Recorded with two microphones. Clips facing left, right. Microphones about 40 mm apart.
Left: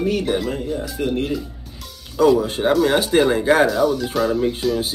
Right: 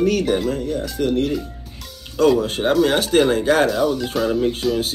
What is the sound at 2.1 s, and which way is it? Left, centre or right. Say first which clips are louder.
Speech: left 1 dB; centre.